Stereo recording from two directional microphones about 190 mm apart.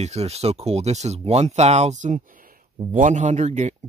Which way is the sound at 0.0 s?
35° right (ahead or behind).